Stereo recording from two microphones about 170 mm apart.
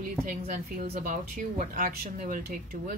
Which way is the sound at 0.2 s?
55° right (ahead or behind).